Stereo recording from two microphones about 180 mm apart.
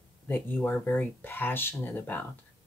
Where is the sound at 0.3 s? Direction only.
10° left (ahead or behind).